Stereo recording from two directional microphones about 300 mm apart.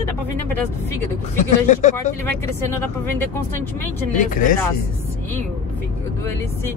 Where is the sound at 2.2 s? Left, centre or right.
Centre.